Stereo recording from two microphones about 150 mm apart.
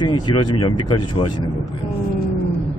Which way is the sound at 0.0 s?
30° left (ahead or behind).